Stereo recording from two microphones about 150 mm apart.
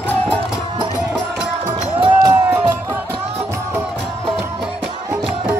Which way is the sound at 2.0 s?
25° right (ahead or behind).